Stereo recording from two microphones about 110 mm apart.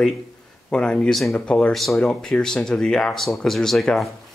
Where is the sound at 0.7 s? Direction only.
10° left (ahead or behind).